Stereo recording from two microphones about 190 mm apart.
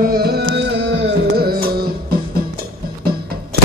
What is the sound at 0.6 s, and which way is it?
Music, 65° right (ahead or behind).